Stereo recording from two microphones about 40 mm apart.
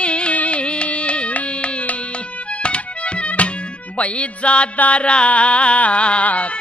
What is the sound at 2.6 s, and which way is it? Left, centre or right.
Music, left.